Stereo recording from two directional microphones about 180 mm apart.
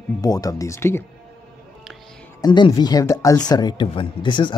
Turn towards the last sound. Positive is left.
turn(degrees=25)  # may be behind; listen again after turning